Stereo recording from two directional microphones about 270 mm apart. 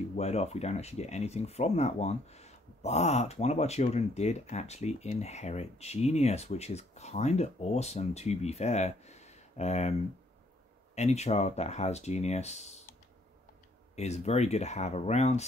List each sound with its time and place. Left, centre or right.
0.2 s speech: left
11.0 s speech: left
13.9 s speech: left